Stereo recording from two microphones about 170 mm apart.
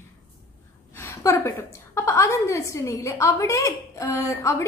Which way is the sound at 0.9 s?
15° left (ahead or behind).